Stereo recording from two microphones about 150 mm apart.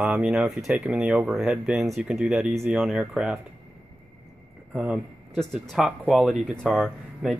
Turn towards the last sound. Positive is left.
turn(degrees=5)  # may be behind; listen again after turning